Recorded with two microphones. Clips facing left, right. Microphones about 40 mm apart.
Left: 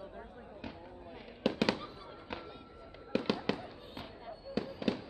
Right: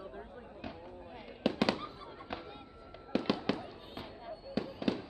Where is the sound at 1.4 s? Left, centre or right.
Centre.